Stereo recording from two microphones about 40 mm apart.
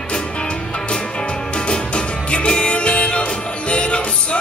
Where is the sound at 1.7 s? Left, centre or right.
Left.